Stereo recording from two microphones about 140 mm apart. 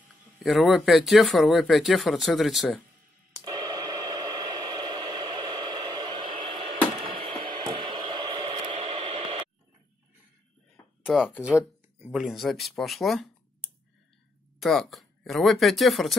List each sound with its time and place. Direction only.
0.4 s speech: centre (ahead or behind)
3.4 s radio: 30° right (ahead or behind); by 9.5 s 45° right (ahead or behind)
11.1 s speech: centre (ahead or behind)